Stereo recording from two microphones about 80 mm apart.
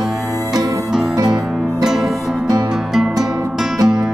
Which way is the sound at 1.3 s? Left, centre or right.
Centre.